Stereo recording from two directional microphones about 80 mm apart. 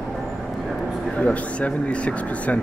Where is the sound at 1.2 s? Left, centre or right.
Centre.